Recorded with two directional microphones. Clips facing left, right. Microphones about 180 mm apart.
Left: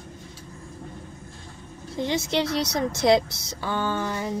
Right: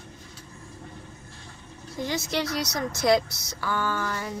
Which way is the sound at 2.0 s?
25° left (ahead or behind).